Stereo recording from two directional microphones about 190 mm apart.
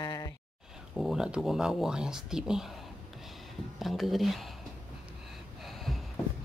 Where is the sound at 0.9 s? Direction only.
Centre (ahead or behind).